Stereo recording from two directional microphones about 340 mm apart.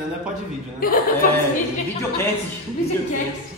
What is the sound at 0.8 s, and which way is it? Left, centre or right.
Speech, left.